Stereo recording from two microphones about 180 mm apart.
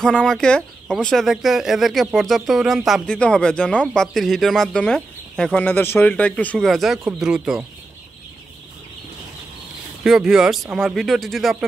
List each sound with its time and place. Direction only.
0.0 s speech: 5° left (ahead or behind)
10.0 s speech: 5° right (ahead or behind)